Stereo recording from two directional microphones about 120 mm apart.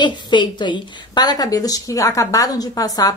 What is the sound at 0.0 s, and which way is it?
Speech, 40° left (ahead or behind).